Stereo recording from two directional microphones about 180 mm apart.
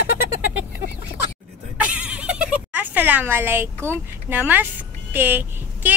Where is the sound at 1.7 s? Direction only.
5° right (ahead or behind).